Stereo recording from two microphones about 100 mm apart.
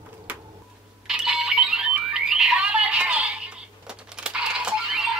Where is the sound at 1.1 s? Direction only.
5° right (ahead or behind).